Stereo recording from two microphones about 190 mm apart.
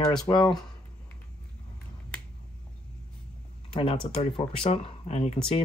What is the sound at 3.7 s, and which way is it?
Speech, 30° left (ahead or behind).